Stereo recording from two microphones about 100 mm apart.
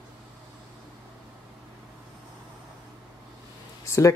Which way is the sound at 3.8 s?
30° left (ahead or behind).